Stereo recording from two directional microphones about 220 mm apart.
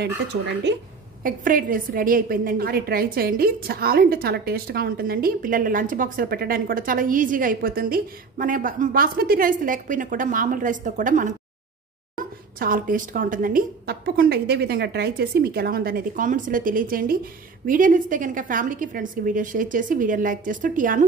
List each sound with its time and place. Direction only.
0.7 s a woman's voice: 50° right (ahead or behind)
1.2 s a woman's voice: 40° right (ahead or behind)
12.5 s a woman's voice: 40° right (ahead or behind)